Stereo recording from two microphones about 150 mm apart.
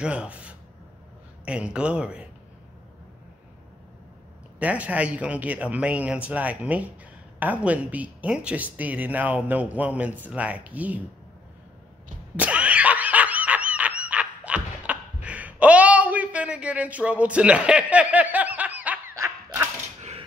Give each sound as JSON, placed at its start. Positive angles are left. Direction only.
{"t": 0.0, "sound": "speech", "side_deg": -5}
{"t": 4.6, "sound": "speech", "side_deg": -10}
{"t": 12.4, "sound": "snicker", "side_deg": -10}
{"t": 20.0, "sound": "mechanisms", "side_deg": -45}